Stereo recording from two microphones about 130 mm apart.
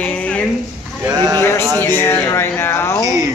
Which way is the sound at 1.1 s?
30° right (ahead or behind).